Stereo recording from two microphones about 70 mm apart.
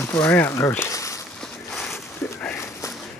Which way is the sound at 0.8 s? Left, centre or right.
Left.